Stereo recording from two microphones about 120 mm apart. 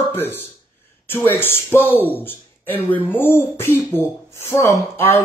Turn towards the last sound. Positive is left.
turn(degrees=20)  # may be behind; listen again after turning